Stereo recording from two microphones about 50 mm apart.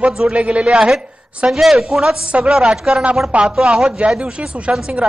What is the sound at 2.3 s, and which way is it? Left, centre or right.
Chopping, centre.